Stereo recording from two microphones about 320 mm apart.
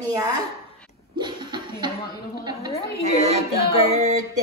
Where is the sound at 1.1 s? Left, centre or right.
Centre.